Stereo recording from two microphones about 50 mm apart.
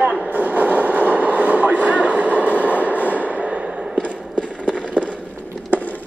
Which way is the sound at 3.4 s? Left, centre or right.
Centre.